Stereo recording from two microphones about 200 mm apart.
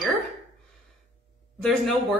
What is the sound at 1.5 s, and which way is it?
Speech, centre (ahead or behind).